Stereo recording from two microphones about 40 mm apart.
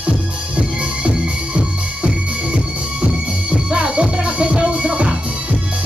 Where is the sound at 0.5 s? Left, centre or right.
Right.